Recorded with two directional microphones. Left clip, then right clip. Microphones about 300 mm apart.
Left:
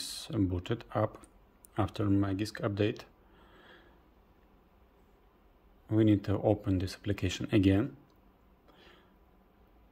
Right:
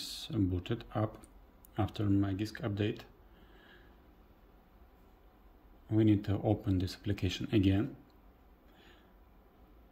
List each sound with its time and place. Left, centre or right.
0.0 s speech: centre
3.5 s a sound: centre
5.9 s speech: centre